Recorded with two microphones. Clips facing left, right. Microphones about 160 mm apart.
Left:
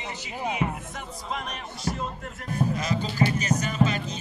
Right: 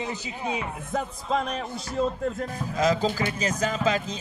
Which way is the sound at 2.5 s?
90° right.